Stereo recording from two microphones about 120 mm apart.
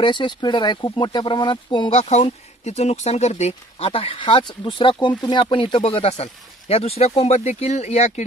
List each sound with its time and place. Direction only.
0.0 s speech: 40° left (ahead or behind); by 8.1 s 65° left (ahead or behind)